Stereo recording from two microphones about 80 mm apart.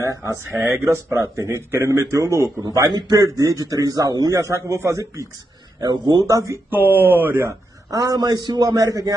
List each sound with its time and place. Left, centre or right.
0.7 s a man's voice: right
2.9 s a man's voice: right
5.8 s speech: right
6.3 s a man's voice: right
6.7 s speech: right
7.9 s a man's voice: right